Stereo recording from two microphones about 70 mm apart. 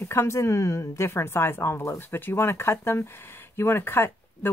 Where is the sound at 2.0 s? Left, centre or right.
Left.